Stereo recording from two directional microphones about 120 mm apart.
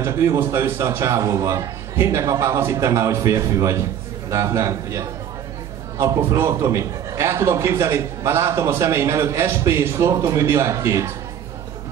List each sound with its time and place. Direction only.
0.0 s a man's voice: 25° right (ahead or behind)